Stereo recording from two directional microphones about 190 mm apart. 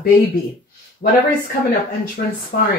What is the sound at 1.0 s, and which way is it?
Speech, 55° left (ahead or behind).